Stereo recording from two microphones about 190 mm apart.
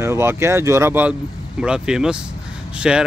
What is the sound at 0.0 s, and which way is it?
Speech, 15° right (ahead or behind).